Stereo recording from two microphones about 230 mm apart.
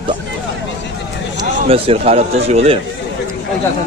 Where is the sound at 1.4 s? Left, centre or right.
Right.